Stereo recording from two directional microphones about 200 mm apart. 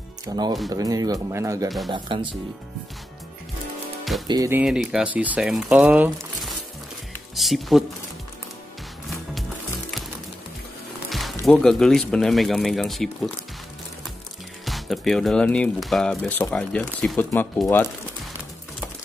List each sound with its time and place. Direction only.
0.2 s speech: 20° right (ahead or behind)
4.3 s speech: 15° right (ahead or behind)
11.1 s speech: centre (ahead or behind)
14.6 s speech: centre (ahead or behind)